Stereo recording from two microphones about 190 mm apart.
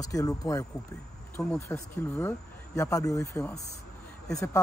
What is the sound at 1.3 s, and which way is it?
Speech, 5° left (ahead or behind).